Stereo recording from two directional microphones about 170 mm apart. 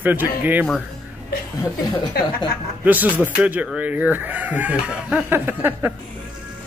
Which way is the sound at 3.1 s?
10° right (ahead or behind).